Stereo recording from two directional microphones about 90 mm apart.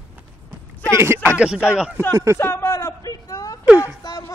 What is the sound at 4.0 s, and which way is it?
Speech, 50° left (ahead or behind).